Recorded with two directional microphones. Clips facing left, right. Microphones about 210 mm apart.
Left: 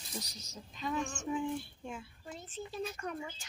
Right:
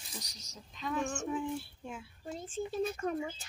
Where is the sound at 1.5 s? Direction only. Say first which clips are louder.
Even; 5° right (ahead or behind).